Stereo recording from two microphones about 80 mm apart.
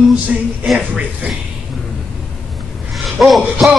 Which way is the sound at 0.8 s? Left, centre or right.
Centre.